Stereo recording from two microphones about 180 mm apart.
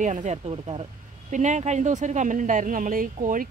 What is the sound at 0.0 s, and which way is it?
Speech, 40° right (ahead or behind).